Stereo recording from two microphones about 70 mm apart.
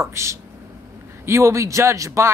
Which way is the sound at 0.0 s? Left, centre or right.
Right.